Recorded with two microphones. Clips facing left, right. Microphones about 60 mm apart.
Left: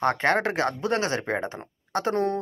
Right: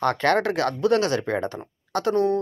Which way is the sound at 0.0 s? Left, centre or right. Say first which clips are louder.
Right 2 dB; left.